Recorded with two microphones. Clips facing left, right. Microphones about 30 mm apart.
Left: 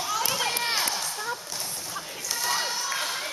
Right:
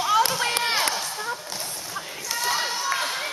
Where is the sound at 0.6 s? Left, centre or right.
Right.